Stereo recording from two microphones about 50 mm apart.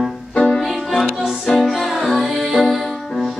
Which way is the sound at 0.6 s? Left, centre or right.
Centre.